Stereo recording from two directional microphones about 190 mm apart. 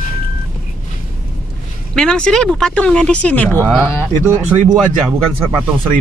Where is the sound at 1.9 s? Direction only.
5° left (ahead or behind).